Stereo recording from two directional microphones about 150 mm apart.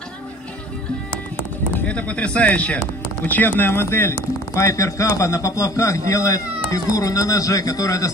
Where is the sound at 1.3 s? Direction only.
10° left (ahead or behind).